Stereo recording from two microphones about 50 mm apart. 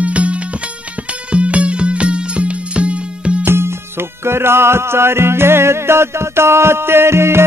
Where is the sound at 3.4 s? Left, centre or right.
Right.